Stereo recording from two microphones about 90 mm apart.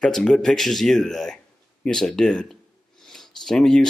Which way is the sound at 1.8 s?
10° left (ahead or behind).